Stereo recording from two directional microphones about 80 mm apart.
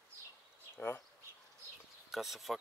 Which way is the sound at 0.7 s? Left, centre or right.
Left.